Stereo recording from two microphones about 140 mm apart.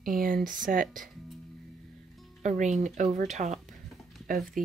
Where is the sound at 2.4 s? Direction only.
60° right (ahead or behind).